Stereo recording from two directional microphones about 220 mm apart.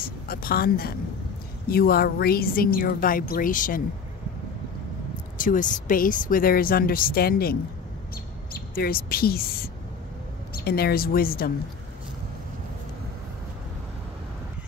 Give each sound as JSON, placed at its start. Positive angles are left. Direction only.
{"t": 0.0, "sound": "speech", "side_deg": 40}
{"t": 5.4, "sound": "speech", "side_deg": 35}
{"t": 8.5, "sound": "speech", "side_deg": 40}